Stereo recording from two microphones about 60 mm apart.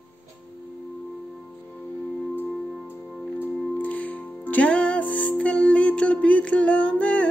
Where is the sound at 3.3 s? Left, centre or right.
Left.